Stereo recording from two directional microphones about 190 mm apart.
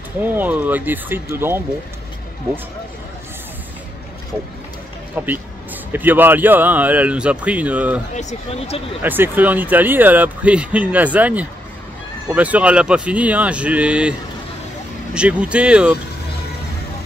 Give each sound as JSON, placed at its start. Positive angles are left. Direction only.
{"t": 0.2, "sound": "speech", "side_deg": -10}
{"t": 5.1, "sound": "speech", "side_deg": -10}
{"t": 8.2, "sound": "speech", "side_deg": 35}
{"t": 9.0, "sound": "speech", "side_deg": -10}
{"t": 15.1, "sound": "speech", "side_deg": -5}